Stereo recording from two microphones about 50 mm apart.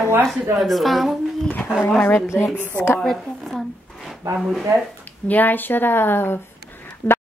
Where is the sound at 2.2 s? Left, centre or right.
Left.